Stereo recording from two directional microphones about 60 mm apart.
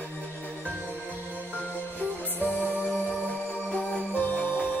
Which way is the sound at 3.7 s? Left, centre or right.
Centre.